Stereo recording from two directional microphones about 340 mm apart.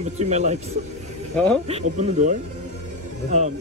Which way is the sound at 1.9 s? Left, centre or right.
Right.